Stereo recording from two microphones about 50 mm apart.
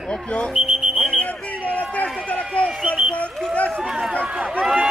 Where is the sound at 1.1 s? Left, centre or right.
Left.